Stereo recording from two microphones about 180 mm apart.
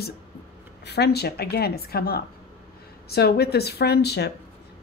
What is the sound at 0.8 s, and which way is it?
A woman's voice, 65° left (ahead or behind).